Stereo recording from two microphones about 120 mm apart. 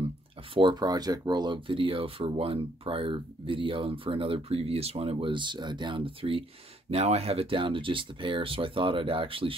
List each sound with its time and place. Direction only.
0.6 s speech: 40° right (ahead or behind)
6.9 s speech: 60° right (ahead or behind)